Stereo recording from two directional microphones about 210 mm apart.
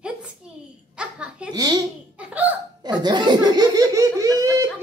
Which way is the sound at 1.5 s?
20° right (ahead or behind).